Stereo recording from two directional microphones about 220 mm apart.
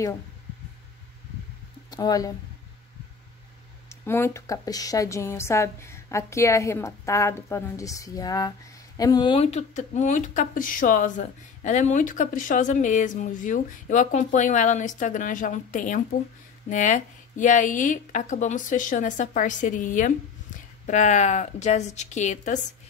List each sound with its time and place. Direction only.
1.9 s speech: 15° left (ahead or behind)
3.9 s a woman's voice: 10° left (ahead or behind); by 22.6 s 35° left (ahead or behind)